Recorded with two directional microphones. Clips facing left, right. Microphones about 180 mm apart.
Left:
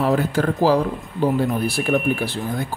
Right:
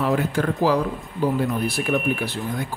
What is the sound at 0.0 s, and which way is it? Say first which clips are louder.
Speech: left 2 dB; 35° left (ahead or behind).